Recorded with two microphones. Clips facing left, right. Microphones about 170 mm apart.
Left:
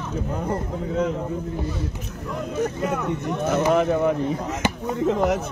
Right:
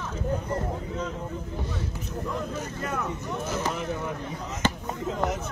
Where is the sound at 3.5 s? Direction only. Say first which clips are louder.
Left 12 dB; 65° left (ahead or behind).